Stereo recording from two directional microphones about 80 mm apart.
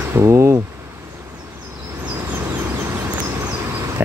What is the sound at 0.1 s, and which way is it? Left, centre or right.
Speech, right.